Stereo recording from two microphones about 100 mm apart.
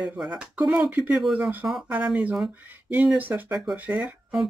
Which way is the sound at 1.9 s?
15° right (ahead or behind).